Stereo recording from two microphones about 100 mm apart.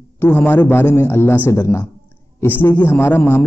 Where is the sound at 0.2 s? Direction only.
20° left (ahead or behind).